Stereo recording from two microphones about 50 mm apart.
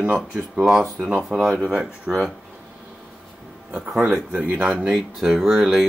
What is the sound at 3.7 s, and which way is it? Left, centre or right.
Speech, centre.